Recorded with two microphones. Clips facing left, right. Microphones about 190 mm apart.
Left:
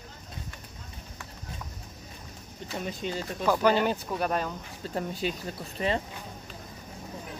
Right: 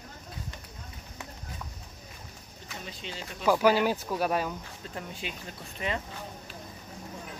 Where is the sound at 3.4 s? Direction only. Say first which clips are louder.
Right 1 dB; 5° right (ahead or behind).